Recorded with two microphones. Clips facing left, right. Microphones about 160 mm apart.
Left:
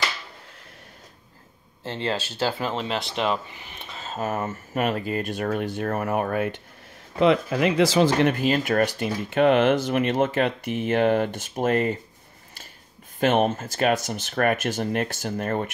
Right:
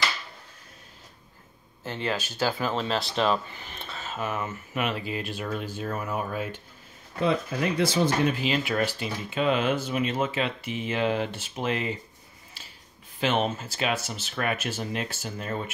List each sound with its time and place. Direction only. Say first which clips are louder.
1.8 s speech: left 2 dB; 30° left (ahead or behind)
4.0 s speech: left 4 dB; 40° left (ahead or behind); by 6.5 s 60° left (ahead or behind)
7.2 s speech: left 6 dB; 90° left
8.4 s speech: left 5 dB; 45° left (ahead or behind); by 10.0 s 70° left (ahead or behind)
10.0 s speech: left 5 dB; 50° left (ahead or behind)
13.2 s speech: left 5 dB; 50° left (ahead or behind)